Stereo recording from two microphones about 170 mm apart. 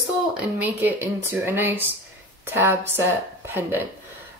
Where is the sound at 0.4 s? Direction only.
10° right (ahead or behind).